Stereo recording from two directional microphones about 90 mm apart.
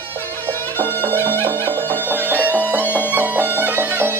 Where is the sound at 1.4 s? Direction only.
25° right (ahead or behind).